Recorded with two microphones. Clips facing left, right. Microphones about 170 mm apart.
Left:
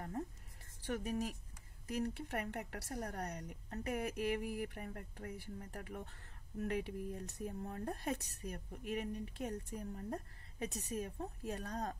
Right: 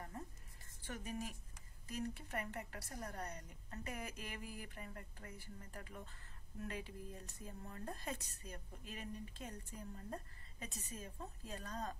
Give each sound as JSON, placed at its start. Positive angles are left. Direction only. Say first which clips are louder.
{"t": 0.8, "sound": "a woman's voice", "louder": "left 7 dB", "side_deg": 70}